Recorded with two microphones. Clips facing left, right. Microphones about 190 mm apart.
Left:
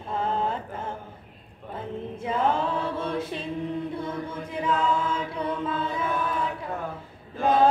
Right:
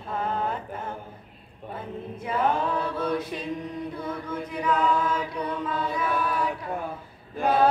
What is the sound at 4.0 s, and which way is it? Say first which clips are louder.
Chant: even; 25° left (ahead or behind).